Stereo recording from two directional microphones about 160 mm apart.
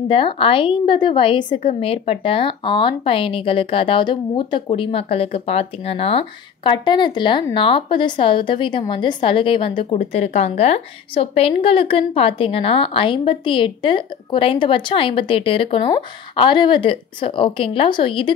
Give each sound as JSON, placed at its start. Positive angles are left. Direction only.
{"t": 0.1, "sound": "a woman's voice", "side_deg": 35}